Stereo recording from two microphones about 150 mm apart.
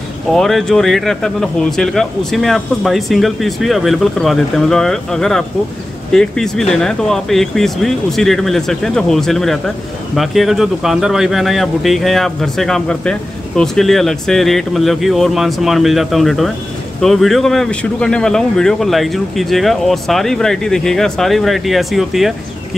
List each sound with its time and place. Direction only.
0.3 s speech: centre (ahead or behind)